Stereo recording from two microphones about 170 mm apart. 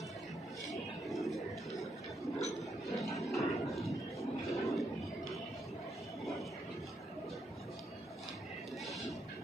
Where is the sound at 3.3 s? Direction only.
Centre (ahead or behind).